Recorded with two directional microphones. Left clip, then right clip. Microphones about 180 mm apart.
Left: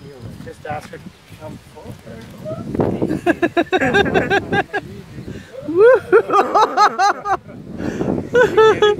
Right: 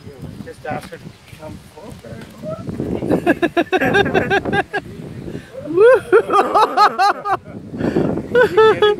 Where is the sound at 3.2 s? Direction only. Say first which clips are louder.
Left 2 dB; 10° right (ahead or behind).